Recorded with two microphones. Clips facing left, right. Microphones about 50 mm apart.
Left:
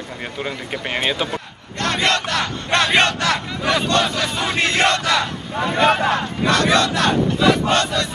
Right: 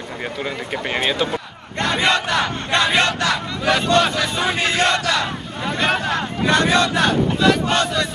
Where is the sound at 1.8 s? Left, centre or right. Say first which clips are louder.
Right 1 dB; centre.